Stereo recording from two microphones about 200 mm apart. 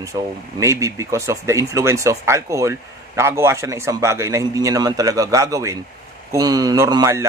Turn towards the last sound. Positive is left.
turn(degrees=-15)  # may be behind; listen again after turning